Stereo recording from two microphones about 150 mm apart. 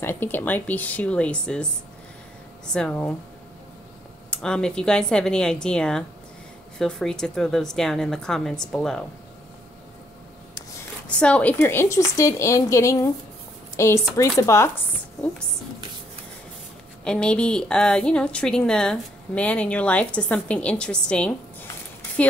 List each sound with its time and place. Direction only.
0.0 s a woman's voice: 15° left (ahead or behind)
2.7 s a woman's voice: 5° left (ahead or behind)
4.3 s a woman's voice: 5° left (ahead or behind)
11.1 s a woman's voice: 5° left (ahead or behind)
17.0 s a woman's voice: 5° left (ahead or behind)